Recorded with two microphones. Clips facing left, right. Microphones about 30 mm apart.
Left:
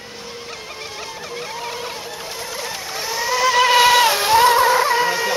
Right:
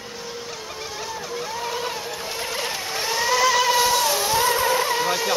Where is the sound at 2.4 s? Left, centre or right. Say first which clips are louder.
Right 2 dB; right.